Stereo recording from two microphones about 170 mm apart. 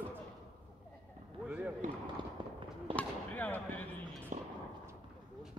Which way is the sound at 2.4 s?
30° right (ahead or behind).